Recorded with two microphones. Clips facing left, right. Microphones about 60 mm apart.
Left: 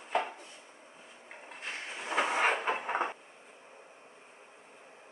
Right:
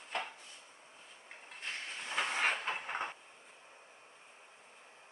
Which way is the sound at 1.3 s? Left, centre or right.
Centre.